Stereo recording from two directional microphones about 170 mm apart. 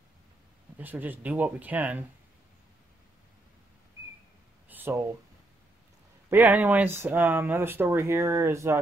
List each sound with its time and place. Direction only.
0.7 s speech: 10° right (ahead or behind)
4.6 s a sound: 10° right (ahead or behind)
6.3 s speech: 10° right (ahead or behind)